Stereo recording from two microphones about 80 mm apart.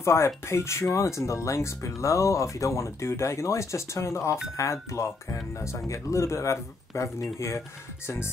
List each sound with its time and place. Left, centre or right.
0.0 s speech: left